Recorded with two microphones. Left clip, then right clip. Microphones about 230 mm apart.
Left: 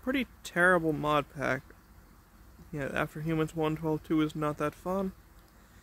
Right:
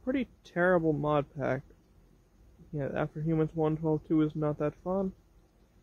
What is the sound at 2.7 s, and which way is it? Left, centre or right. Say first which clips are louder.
Speech: left 1 dB; centre.